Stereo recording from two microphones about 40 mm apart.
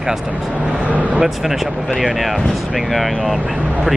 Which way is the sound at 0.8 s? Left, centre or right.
Right.